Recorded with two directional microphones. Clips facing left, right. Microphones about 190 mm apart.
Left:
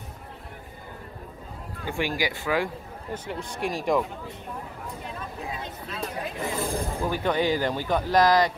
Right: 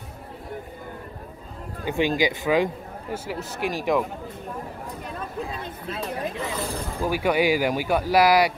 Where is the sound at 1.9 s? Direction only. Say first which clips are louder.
Right 5 dB; 20° right (ahead or behind).